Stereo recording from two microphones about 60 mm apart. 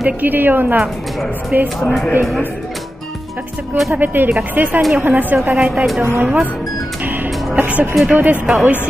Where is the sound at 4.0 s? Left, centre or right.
Right.